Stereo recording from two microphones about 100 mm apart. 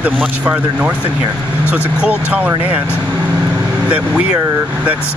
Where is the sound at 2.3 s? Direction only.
15° right (ahead or behind).